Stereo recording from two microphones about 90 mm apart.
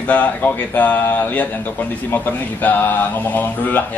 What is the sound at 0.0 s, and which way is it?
Speech, 15° left (ahead or behind).